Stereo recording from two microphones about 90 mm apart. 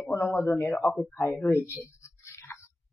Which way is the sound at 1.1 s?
30° left (ahead or behind).